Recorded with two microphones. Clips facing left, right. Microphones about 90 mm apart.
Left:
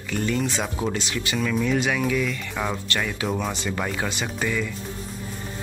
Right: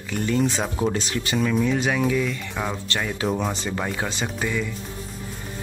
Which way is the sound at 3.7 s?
20° right (ahead or behind).